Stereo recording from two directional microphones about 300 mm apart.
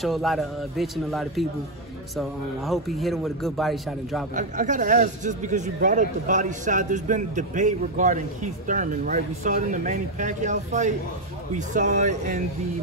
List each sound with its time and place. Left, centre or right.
0.0 s a man's voice: centre
4.4 s speech: right